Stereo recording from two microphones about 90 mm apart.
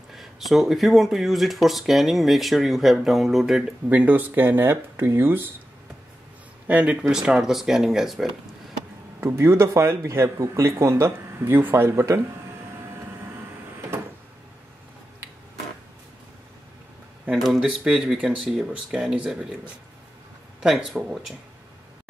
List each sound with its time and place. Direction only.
0.1 s speech: centre (ahead or behind)
3.9 s speech: 15° right (ahead or behind)
6.7 s speech: 15° right (ahead or behind)
9.2 s a man's voice: 30° right (ahead or behind)
17.3 s speech: 5° right (ahead or behind)
20.6 s speech: centre (ahead or behind)